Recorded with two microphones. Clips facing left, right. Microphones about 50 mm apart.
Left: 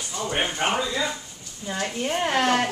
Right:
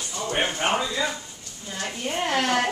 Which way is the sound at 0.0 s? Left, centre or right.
Centre.